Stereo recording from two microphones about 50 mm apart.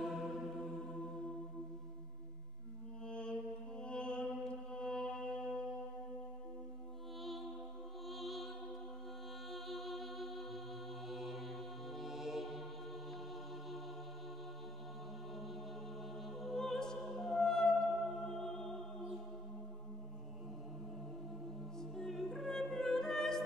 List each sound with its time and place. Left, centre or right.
0.0 s music: centre
3.1 s music: centre
8.1 s music: centre
9.5 s music: centre
16.3 s music: centre
21.7 s music: centre